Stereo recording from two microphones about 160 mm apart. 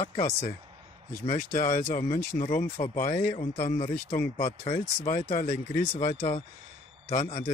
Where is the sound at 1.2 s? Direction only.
55° left (ahead or behind).